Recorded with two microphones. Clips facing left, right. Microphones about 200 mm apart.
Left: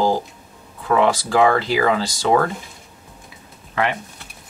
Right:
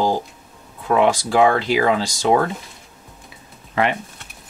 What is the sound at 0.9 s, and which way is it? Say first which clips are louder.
Speech: right 1 dB; 15° right (ahead or behind).